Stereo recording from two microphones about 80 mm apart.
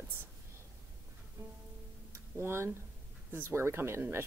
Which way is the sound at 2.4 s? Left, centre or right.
Right.